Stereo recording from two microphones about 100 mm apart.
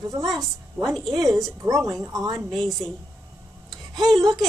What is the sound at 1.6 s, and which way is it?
Speech, 35° right (ahead or behind).